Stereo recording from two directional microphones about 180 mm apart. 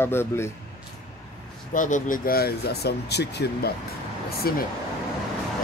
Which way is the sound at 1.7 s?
45° left (ahead or behind).